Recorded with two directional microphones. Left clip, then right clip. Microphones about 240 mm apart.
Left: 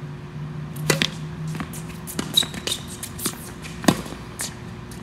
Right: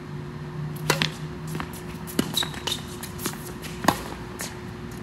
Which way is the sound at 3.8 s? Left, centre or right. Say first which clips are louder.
Left 1 dB; left.